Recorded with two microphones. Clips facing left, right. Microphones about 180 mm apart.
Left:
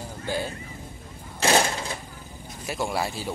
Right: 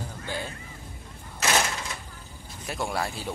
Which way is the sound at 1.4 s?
30° left (ahead or behind).